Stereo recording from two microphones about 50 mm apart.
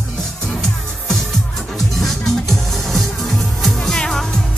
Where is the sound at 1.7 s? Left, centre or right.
Centre.